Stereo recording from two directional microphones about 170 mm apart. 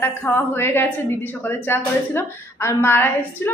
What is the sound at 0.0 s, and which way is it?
A woman's voice, 10° left (ahead or behind).